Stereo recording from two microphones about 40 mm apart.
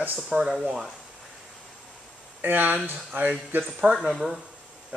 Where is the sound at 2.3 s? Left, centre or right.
Right.